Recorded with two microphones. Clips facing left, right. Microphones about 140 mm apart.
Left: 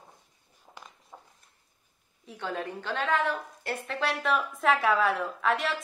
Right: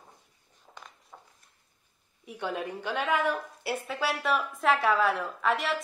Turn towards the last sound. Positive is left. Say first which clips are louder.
# even
turn(degrees=0)  # may be behind; listen again after turning